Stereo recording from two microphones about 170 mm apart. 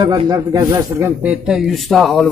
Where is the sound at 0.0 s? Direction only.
25° right (ahead or behind).